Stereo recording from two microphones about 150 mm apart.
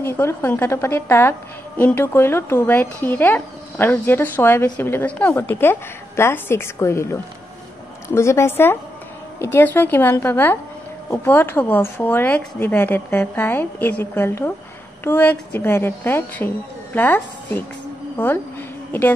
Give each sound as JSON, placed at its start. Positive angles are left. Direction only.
{"t": 0.0, "sound": "a woman's voice", "side_deg": 15}